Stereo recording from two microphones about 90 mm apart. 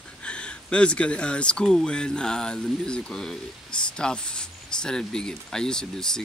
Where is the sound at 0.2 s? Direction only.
10° left (ahead or behind).